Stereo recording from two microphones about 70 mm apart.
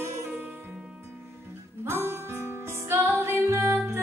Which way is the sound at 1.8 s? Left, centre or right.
Right.